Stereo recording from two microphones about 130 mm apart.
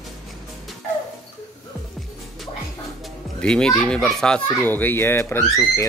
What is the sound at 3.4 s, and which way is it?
Speech, 5° left (ahead or behind).